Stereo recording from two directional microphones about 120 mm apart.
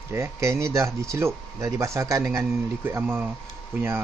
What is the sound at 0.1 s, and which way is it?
Speech, 25° right (ahead or behind).